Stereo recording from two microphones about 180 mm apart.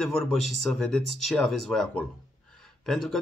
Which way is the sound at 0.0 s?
Centre (ahead or behind).